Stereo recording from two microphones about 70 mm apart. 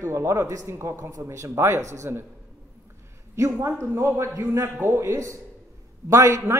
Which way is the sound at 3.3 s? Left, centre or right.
Right.